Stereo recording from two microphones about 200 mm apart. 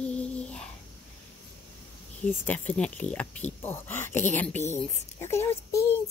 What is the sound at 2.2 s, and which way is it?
Speech, 5° left (ahead or behind).